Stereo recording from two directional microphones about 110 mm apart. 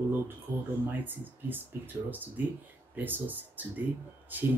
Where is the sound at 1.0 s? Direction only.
15° right (ahead or behind).